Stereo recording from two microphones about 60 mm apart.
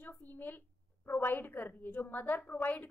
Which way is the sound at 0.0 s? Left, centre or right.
Left.